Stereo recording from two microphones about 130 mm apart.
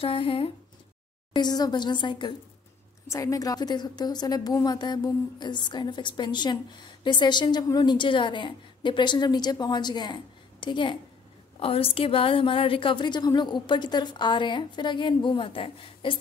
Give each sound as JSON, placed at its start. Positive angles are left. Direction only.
{"t": 0.0, "sound": "speech", "side_deg": 45}
{"t": 1.3, "sound": "a woman's voice", "side_deg": 30}
{"t": 3.1, "sound": "a woman's voice", "side_deg": 25}